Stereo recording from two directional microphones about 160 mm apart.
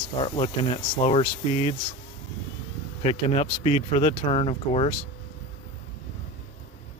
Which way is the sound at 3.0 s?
40° left (ahead or behind).